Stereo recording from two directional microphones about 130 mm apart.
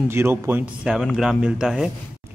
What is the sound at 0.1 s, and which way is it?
Speech, 20° right (ahead or behind).